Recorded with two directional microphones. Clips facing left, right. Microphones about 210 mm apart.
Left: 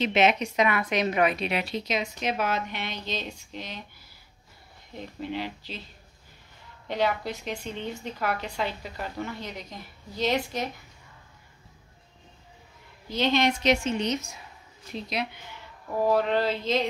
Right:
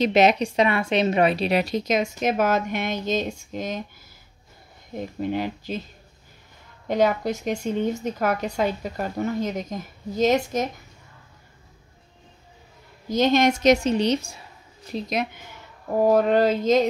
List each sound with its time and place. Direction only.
0.0 s a woman's voice: 40° right (ahead or behind)
4.9 s a woman's voice: 50° right (ahead or behind)
6.9 s a woman's voice: 45° right (ahead or behind)
13.1 s a woman's voice: 45° right (ahead or behind)
15.0 s a woman's voice: 45° right (ahead or behind)